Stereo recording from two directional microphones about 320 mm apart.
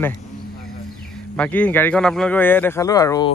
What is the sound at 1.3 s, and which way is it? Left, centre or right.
Speech, centre.